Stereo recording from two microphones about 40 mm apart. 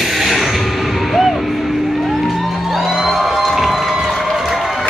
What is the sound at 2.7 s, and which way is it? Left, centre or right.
Cheering, centre.